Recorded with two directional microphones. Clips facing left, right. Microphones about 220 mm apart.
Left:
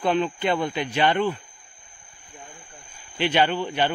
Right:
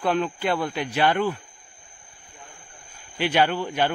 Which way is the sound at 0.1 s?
5° right (ahead or behind).